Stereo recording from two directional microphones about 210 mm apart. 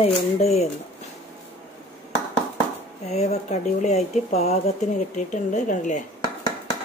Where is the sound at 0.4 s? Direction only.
30° left (ahead or behind).